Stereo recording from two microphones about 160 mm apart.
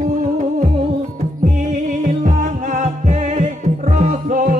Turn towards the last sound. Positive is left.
turn(degrees=-55)  # may be behind; listen again after turning